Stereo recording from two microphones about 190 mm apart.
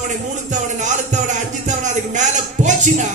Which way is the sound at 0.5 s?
40° right (ahead or behind).